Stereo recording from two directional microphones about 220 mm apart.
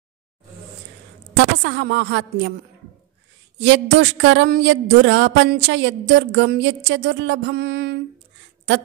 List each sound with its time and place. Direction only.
1.3 s a woman's voice: 55° right (ahead or behind)
3.5 s speech: 55° right (ahead or behind)